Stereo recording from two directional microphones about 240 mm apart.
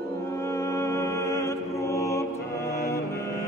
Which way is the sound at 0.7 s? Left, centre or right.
Centre.